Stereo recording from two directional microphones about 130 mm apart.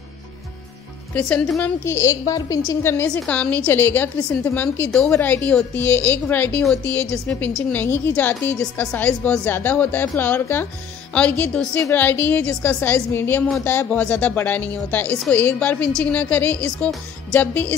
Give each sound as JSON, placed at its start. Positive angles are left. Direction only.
{"t": 1.1, "sound": "a woman's voice", "side_deg": 10}
{"t": 1.6, "sound": "a woman's voice", "side_deg": 20}